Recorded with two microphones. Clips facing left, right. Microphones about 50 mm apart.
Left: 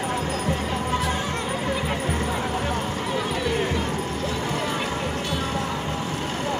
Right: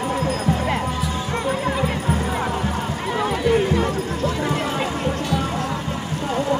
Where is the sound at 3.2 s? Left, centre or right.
Right.